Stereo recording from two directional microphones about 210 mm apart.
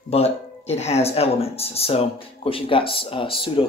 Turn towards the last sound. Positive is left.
turn(degrees=25)  # may be behind; listen again after turning